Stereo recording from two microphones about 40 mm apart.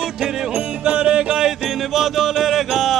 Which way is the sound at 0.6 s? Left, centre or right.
Right.